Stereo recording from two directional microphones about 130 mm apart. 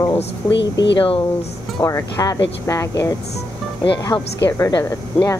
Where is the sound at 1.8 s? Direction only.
25° left (ahead or behind).